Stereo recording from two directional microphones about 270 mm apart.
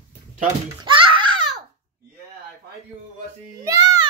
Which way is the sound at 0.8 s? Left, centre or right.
Centre.